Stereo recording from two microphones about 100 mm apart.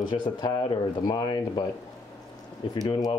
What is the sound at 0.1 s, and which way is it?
Speech, 50° left (ahead or behind).